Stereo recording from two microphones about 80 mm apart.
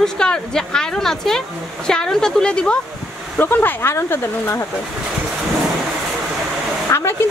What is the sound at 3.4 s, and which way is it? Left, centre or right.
Speech, left.